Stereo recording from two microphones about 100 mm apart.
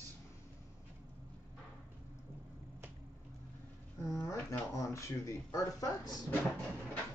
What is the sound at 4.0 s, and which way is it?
Speech, 30° left (ahead or behind).